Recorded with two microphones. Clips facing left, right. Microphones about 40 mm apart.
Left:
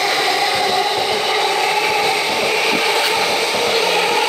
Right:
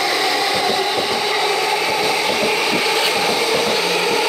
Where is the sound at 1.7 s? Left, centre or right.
Left.